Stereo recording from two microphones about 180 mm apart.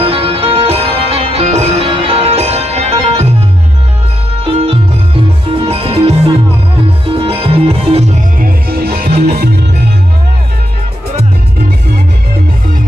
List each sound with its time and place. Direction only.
0.0 s music: 30° right (ahead or behind)
4.5 s music: 30° right (ahead or behind)
8.4 s music: 55° right (ahead or behind)